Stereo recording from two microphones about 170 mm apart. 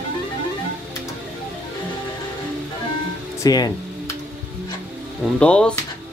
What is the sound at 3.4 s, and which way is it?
Music, 20° left (ahead or behind).